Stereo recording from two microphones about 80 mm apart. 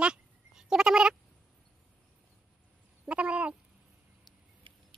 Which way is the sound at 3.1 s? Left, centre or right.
Centre.